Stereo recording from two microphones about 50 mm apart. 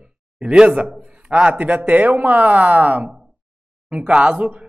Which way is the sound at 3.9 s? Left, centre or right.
Centre.